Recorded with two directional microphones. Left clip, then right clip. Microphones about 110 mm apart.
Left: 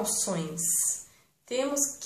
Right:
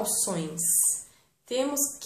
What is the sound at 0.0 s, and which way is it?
Speech, 10° right (ahead or behind).